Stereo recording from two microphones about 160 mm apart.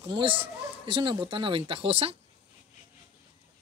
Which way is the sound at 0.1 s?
35° right (ahead or behind).